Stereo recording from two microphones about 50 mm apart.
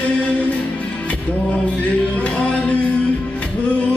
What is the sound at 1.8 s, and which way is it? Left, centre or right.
Music, left.